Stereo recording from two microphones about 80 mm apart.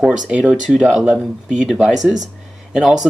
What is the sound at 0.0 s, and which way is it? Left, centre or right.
Speech, centre.